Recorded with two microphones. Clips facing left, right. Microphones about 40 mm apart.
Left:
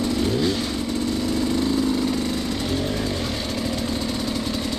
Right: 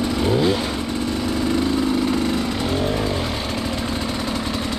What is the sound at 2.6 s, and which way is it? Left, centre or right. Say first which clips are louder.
Vehicle: right 3 dB; centre.